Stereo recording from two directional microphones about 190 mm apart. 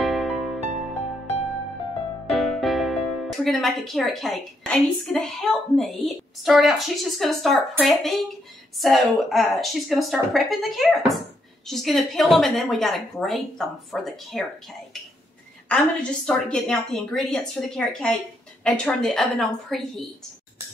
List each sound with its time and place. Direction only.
0.0 s music: centre (ahead or behind)
2.2 s speech: centre (ahead or behind)
15.7 s speech: 5° left (ahead or behind)